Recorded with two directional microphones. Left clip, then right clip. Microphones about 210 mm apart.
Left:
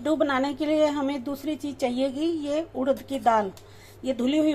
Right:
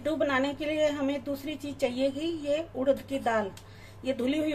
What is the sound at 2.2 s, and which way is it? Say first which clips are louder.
Speech: left 3 dB; 20° left (ahead or behind).